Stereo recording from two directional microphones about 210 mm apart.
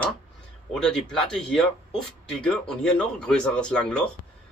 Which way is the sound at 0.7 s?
Centre (ahead or behind).